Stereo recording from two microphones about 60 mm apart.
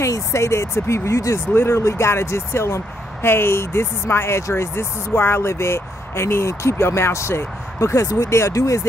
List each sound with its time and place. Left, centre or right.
0.0 s speech: left